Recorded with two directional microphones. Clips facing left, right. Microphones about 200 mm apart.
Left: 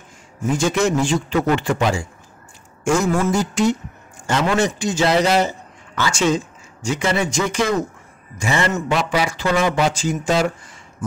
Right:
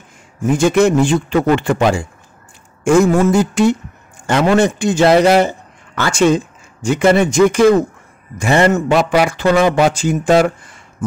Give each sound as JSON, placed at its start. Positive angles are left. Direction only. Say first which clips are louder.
{"t": 0.5, "sound": "a man's voice", "louder": "right 6 dB", "side_deg": -60}